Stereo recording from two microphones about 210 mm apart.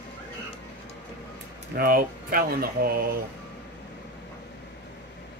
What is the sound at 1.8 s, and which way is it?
Speech, 45° right (ahead or behind).